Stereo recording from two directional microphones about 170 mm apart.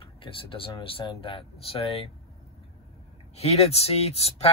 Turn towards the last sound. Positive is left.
turn(degrees=35)  # may be behind; listen again after turning